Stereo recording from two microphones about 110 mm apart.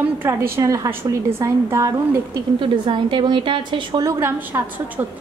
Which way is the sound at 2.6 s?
50° right (ahead or behind).